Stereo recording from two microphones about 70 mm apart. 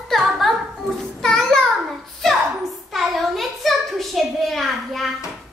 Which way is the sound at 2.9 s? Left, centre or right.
Centre.